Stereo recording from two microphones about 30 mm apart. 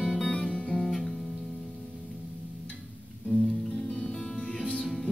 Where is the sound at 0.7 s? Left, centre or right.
Centre.